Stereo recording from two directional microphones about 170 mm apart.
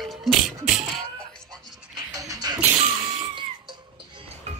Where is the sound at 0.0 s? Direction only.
Centre (ahead or behind).